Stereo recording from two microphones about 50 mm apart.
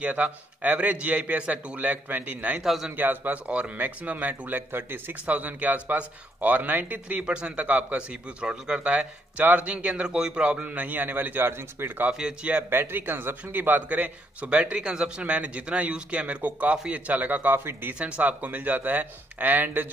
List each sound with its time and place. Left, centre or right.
0.0 s a man's voice: right
2.6 s a man's voice: centre
3.0 s speech: right
3.4 s speech: right
5.2 s a man's voice: right
9.4 s a man's voice: right
12.1 s a man's voice: centre
12.6 s a man's voice: right